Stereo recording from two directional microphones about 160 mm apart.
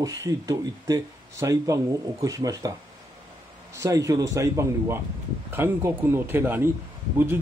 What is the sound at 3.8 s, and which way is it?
Speech, 20° right (ahead or behind).